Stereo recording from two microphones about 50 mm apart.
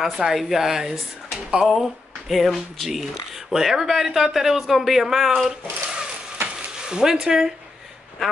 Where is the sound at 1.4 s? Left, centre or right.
Centre.